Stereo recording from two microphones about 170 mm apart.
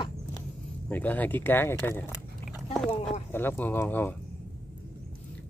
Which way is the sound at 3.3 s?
10° left (ahead or behind).